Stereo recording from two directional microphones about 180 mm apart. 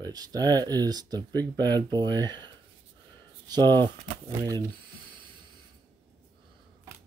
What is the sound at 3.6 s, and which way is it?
Speech, 10° left (ahead or behind).